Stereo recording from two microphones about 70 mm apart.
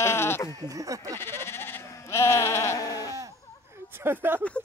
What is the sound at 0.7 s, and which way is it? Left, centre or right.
Speech, right.